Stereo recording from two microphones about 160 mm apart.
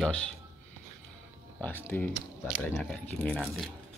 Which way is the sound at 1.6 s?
15° left (ahead or behind).